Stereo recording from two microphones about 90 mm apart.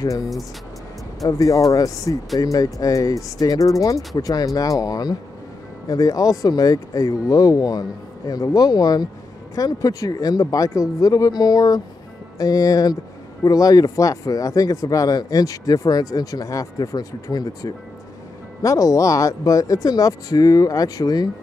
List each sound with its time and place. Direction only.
1.2 s speech: 40° left (ahead or behind)